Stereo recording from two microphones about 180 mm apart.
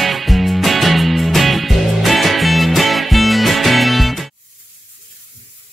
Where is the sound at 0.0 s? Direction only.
Centre (ahead or behind).